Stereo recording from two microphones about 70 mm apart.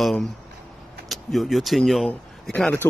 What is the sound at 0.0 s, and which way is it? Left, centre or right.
Speech, centre.